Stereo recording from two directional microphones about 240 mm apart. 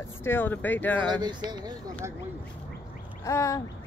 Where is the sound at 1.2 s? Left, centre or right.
Centre.